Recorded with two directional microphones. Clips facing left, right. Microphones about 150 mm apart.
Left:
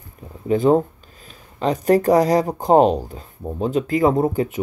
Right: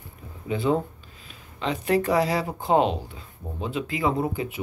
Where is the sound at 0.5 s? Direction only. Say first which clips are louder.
Left 8 dB; 45° left (ahead or behind).